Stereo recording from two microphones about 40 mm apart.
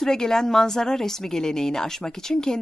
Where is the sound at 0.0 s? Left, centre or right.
Centre.